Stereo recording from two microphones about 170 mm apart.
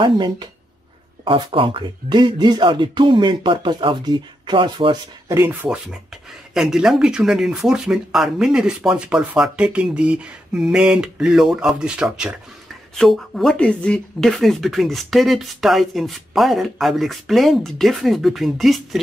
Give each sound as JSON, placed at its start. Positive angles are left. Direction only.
{"t": 0.0, "sound": "speech", "side_deg": -25}
{"t": 5.5, "sound": "speech", "side_deg": -5}